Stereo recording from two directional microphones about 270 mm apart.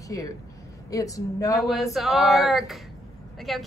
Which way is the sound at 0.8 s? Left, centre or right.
Centre.